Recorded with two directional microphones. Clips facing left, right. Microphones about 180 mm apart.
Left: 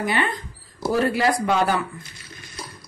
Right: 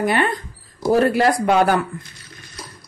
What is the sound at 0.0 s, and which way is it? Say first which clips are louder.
Speech: right 5 dB; 50° right (ahead or behind).